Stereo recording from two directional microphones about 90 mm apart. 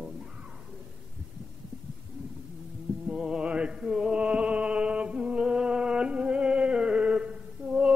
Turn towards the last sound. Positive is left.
turn(degrees=-10)  # may be behind; listen again after turning